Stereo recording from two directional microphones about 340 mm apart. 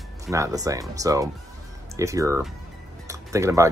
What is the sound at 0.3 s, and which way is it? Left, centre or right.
Speech, centre.